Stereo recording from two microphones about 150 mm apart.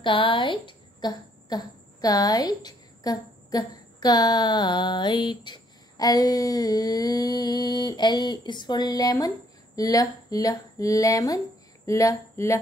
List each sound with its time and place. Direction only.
0.0 s speech: 35° left (ahead or behind)